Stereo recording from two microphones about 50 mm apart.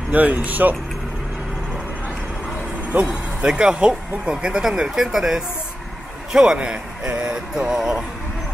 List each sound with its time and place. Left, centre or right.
0.1 s speech: right
2.9 s speech: right
3.3 s speech: centre